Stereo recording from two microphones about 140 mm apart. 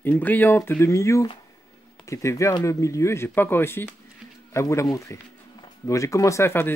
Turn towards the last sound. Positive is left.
turn(degrees=15)  # may be behind; listen again after turning